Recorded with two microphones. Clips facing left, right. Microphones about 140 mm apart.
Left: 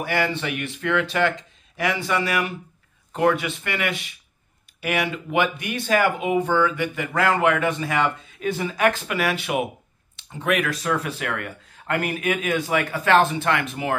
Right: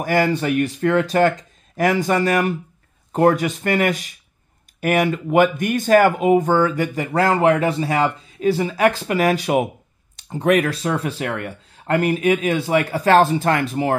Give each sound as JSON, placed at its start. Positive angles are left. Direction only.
{"t": 0.0, "sound": "speech", "side_deg": -40}